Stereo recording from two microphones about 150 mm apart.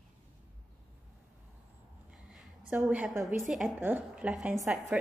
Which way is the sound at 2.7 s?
10° right (ahead or behind).